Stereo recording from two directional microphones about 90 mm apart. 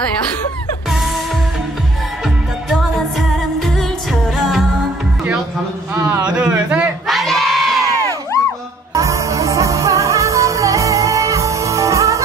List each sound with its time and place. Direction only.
2.7 s music of asia: centre (ahead or behind)
6.2 s a sound: 10° right (ahead or behind)
7.1 s crowd: centre (ahead or behind)
8.9 s music: 35° right (ahead or behind)